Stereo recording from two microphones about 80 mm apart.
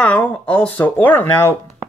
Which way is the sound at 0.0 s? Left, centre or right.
Centre.